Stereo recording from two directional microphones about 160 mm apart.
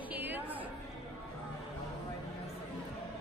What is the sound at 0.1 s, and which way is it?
Chatter, 10° right (ahead or behind).